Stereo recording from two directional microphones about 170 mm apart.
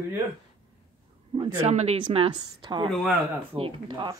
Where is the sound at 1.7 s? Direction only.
40° right (ahead or behind).